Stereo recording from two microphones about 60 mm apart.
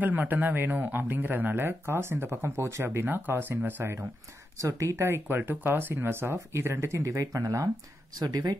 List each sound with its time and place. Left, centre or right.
0.0 s speech: right
4.6 s speech: right
7.1 s speech: right
8.2 s speech: right